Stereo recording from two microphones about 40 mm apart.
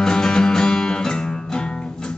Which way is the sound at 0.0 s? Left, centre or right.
Centre.